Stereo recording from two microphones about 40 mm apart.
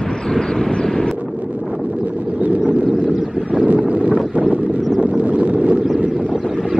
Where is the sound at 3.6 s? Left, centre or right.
Right.